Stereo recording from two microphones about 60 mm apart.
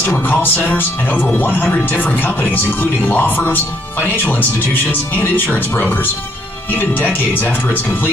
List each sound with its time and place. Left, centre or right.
0.1 s speech: left